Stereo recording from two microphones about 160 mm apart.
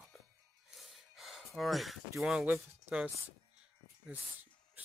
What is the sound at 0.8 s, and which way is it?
Gasp, centre (ahead or behind).